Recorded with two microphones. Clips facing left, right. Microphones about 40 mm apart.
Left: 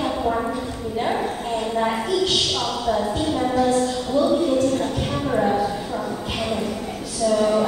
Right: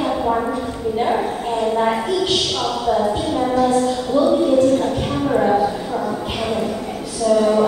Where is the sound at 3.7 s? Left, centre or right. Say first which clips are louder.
Right 3 dB; centre.